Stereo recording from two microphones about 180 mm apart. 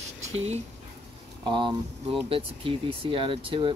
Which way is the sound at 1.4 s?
25° right (ahead or behind).